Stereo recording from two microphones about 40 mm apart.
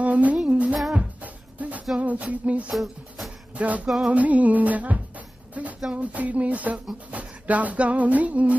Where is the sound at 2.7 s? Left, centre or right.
Centre.